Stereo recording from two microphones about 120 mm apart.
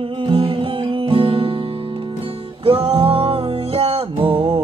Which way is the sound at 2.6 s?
45° right (ahead or behind).